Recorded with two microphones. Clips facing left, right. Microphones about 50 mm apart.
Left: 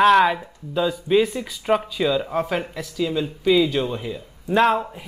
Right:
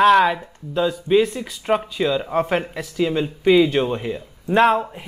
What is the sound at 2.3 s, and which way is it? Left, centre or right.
Speech, right.